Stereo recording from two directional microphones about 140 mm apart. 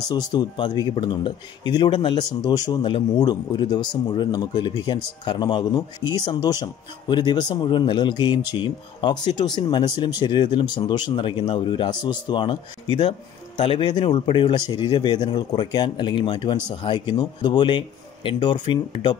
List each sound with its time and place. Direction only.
0.1 s speech: 30° left (ahead or behind)